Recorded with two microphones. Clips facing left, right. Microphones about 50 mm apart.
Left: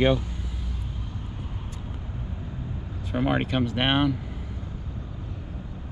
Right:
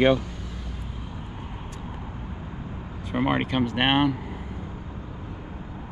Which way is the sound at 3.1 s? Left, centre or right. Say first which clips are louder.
Right 1 dB; right.